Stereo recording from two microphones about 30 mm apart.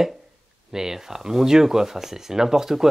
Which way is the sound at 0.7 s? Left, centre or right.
Centre.